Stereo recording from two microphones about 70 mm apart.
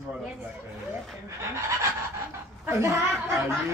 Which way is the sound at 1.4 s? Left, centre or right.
Right.